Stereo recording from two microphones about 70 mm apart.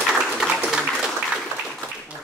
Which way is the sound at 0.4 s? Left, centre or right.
Centre.